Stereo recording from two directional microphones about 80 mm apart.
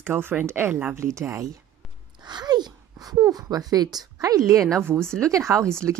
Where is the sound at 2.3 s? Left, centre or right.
Right.